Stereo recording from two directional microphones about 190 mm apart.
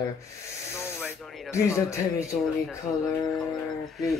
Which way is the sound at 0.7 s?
15° left (ahead or behind).